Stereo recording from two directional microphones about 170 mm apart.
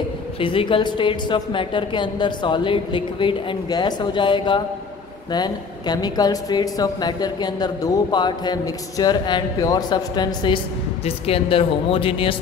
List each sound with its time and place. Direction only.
0.4 s a woman's voice: 30° left (ahead or behind)